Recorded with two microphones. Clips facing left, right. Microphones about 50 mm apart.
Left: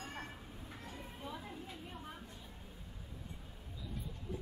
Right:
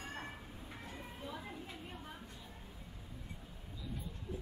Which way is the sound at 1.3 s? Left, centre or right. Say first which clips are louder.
Even; centre.